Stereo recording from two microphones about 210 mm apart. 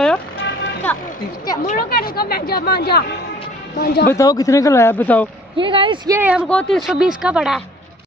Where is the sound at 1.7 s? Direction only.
45° left (ahead or behind).